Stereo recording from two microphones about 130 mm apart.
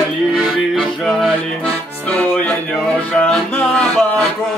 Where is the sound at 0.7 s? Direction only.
Centre (ahead or behind).